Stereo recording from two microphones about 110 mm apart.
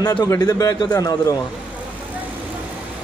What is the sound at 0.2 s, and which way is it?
Speech, 35° left (ahead or behind).